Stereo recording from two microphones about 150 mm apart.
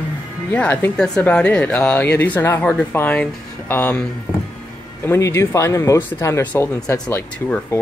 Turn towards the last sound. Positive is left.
turn(degrees=15)  # may be behind; listen again after turning